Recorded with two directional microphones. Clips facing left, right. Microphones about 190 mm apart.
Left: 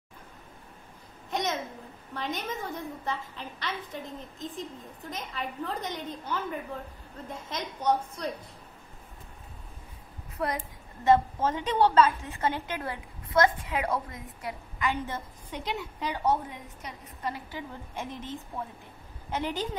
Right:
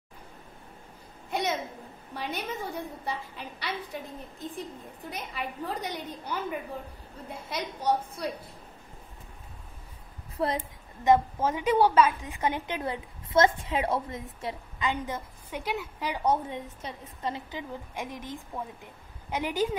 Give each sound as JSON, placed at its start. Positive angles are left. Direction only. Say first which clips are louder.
{"t": 1.3, "sound": "a sound", "louder": "right 1 dB", "side_deg": -10}
{"t": 2.1, "sound": "a woman's voice", "louder": "even", "side_deg": -10}
{"t": 7.4, "sound": "a woman's voice", "louder": "even", "side_deg": -10}
{"t": 10.3, "sound": "a woman's voice", "louder": "right 3 dB", "side_deg": -25}
{"t": 11.3, "sound": "a woman's voice", "louder": "right 2 dB", "side_deg": -10}
{"t": 16.4, "sound": "a woman's voice", "louder": "right 5 dB", "side_deg": -25}